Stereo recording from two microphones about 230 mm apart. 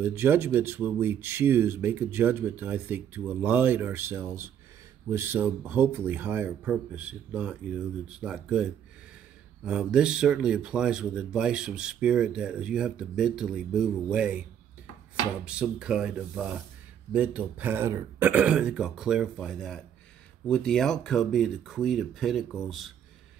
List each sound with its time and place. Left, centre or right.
0.0 s speech: centre
9.7 s speech: centre
15.4 s speech: centre